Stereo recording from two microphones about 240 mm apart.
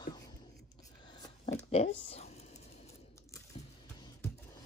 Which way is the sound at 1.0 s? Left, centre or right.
Centre.